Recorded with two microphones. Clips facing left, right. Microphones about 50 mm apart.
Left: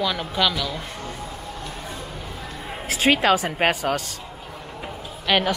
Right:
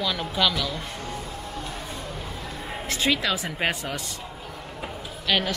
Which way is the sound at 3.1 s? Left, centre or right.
Left.